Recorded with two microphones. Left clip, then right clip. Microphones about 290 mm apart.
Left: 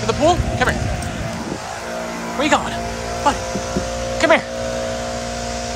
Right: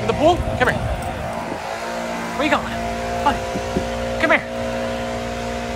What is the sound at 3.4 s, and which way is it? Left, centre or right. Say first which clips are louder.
Power windows: even; right.